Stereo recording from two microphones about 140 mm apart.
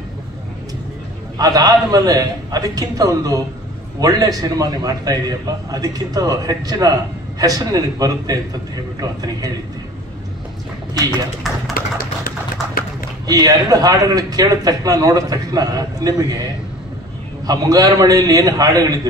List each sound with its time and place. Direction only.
1.4 s a man's voice: 25° right (ahead or behind)
11.7 s typewriter: 90° left
13.3 s a man's voice: 25° right (ahead or behind)
17.5 s a man's voice: 25° right (ahead or behind)